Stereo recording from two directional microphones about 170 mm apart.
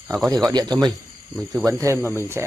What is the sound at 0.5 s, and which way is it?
Speech, 25° right (ahead or behind).